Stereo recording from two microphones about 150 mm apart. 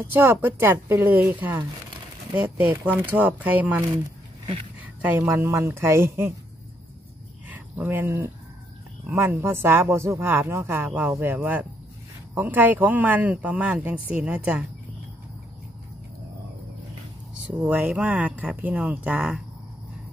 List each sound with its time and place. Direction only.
0.0 s speech: 15° right (ahead or behind)
7.4 s a sound: 10° right (ahead or behind)
9.0 s speech: 15° right (ahead or behind)
17.5 s speech: 10° right (ahead or behind)